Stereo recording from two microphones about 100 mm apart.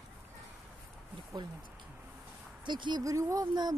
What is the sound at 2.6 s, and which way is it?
Speech, 50° right (ahead or behind).